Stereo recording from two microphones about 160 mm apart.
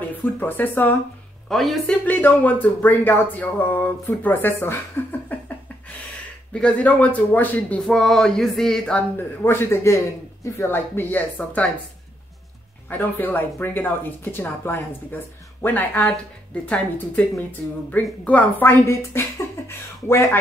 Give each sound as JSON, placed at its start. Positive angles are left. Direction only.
{"t": 0.4, "sound": "speech", "side_deg": 10}
{"t": 1.5, "sound": "speech", "side_deg": 0}
{"t": 5.3, "sound": "a sound", "side_deg": 10}
{"t": 6.5, "sound": "speech", "side_deg": 10}
{"t": 12.9, "sound": "speech", "side_deg": 10}